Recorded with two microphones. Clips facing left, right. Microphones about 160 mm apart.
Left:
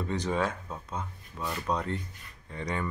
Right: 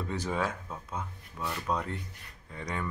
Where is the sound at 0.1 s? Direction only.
5° right (ahead or behind).